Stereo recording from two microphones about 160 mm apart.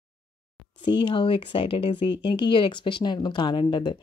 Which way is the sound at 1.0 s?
30° left (ahead or behind).